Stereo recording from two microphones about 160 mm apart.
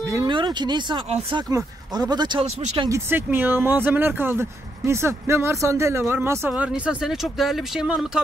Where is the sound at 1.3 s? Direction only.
25° right (ahead or behind).